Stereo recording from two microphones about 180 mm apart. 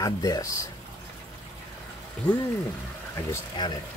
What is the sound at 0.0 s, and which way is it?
Speech, 20° left (ahead or behind).